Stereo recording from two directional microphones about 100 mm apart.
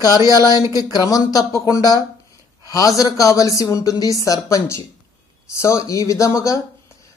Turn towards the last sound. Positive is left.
turn(degrees=30)  # may be behind; listen again after turning